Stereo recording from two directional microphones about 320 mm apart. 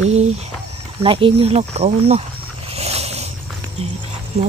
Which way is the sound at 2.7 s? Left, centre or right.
Centre.